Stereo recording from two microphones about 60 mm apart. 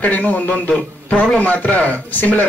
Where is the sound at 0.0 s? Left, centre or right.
Left.